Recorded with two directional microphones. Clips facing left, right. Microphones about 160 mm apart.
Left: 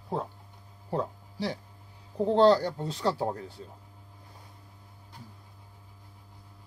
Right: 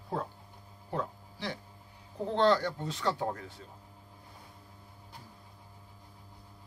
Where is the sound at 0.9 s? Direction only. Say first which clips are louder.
Left 4 dB; 35° left (ahead or behind).